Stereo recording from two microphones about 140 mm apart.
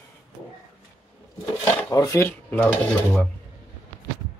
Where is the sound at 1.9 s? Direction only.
25° left (ahead or behind).